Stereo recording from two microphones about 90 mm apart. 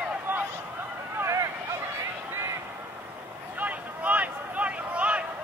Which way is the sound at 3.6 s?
15° right (ahead or behind).